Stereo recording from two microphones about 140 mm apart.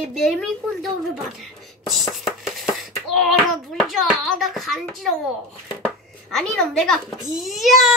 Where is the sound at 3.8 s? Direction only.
Centre (ahead or behind).